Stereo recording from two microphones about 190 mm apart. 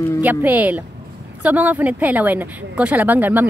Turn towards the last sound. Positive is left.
turn(degrees=-10)  # may be behind; listen again after turning